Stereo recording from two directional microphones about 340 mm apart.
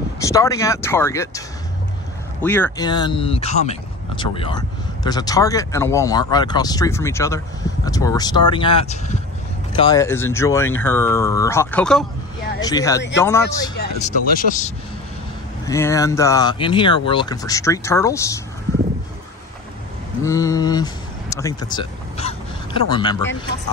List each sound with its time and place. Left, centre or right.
0.2 s speech: centre
2.4 s speech: centre
13.7 s speech: left
15.6 s speech: centre
20.2 s speech: centre